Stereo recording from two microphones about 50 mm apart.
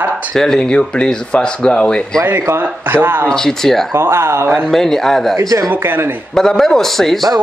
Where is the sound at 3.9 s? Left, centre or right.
Right.